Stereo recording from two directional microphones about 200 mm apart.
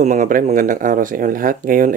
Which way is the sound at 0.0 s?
40° right (ahead or behind).